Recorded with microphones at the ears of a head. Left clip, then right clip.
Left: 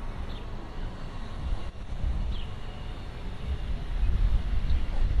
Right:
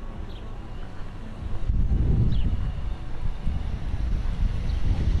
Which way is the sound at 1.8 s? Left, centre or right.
Right.